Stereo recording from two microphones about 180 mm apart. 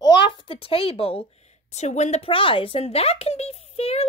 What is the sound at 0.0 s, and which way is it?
A woman's voice, 30° left (ahead or behind).